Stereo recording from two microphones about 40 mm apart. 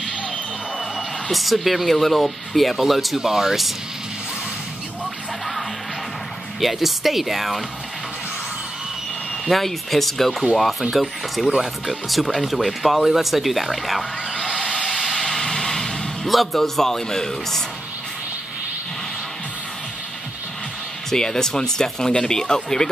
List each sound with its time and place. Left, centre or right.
0.9 s speech: centre
6.6 s speech: centre
9.5 s speech: centre
14.9 s music: centre
16.3 s a man's voice: centre
21.1 s a man's voice: centre